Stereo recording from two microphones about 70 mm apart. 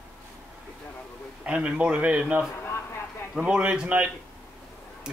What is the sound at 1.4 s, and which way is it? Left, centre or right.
Speech, centre.